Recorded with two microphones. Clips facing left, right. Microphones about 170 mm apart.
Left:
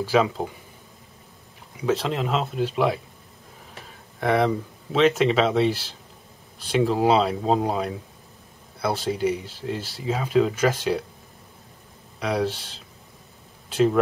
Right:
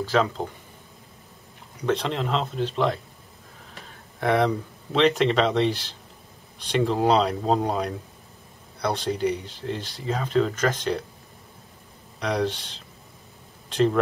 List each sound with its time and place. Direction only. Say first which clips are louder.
0.0 s speech: left 2 dB; 5° left (ahead or behind)
1.8 s speech: left 1 dB; 5° left (ahead or behind)
4.2 s speech: left 1 dB; centre (ahead or behind)
12.2 s speech: left 1 dB; 5° left (ahead or behind)